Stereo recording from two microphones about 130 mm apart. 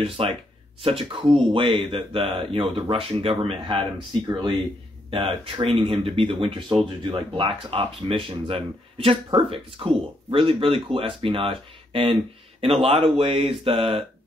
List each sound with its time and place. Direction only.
0.0 s speech: 45° right (ahead or behind)